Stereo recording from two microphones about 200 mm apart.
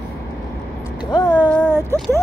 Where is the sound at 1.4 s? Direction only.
5° left (ahead or behind).